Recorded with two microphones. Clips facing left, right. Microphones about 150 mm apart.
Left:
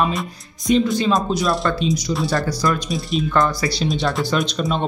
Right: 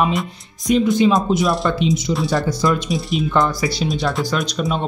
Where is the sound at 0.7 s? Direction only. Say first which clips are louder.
Right 1 dB; 5° right (ahead or behind).